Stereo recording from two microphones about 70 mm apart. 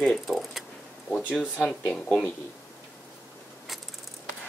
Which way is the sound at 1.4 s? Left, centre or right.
Centre.